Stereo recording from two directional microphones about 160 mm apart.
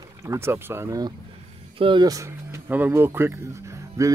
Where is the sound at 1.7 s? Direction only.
30° right (ahead or behind).